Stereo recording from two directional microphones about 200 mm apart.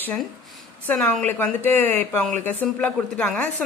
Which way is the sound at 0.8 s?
5° left (ahead or behind).